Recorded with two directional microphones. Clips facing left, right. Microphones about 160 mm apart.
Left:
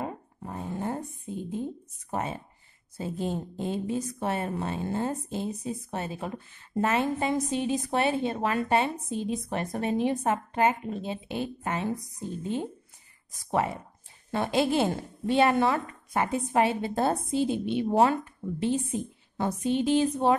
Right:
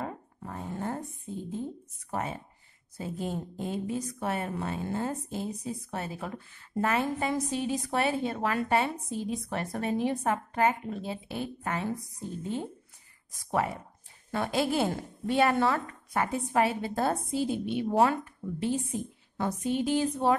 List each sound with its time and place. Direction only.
0.0 s a sound: 20° left (ahead or behind)
3.0 s a woman's voice: 25° left (ahead or behind)
13.5 s a woman's voice: 25° left (ahead or behind)
19.3 s a woman's voice: 25° left (ahead or behind)